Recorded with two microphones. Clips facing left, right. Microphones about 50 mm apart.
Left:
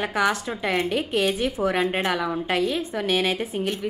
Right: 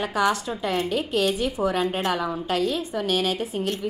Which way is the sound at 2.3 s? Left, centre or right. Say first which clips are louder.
Left 1 dB; left.